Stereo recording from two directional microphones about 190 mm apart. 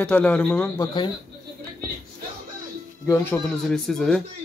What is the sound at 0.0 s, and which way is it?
Speech, 5° left (ahead or behind).